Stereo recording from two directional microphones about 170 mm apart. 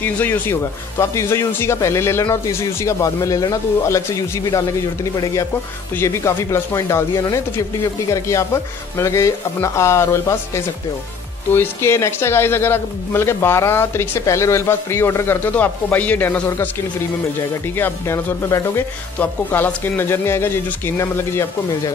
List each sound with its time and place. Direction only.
0.0 s speech: 10° left (ahead or behind)
17.7 s speech: 15° left (ahead or behind)